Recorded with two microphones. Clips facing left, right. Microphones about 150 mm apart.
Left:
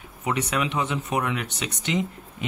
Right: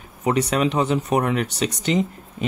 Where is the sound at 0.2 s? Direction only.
35° right (ahead or behind).